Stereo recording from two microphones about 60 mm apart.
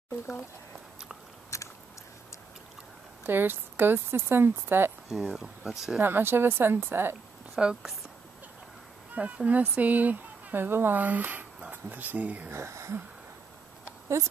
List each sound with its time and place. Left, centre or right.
1.5 s biting: left
3.3 s speech: right
5.1 s speech: centre
5.9 s speech: right
7.6 s speech: centre
9.1 s speech: right
12.4 s speech: right